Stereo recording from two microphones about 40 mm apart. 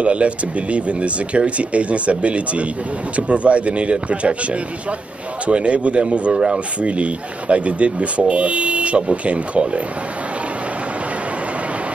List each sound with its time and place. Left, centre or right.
0.0 s speech: right
6.3 s speech: centre
6.8 s speech: right